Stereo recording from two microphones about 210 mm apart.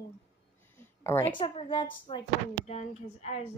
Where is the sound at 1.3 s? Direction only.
25° left (ahead or behind).